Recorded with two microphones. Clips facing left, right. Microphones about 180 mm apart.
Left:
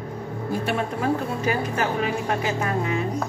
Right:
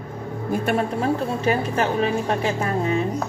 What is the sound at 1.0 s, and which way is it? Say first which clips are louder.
A woman's voice: right 2 dB; 30° right (ahead or behind).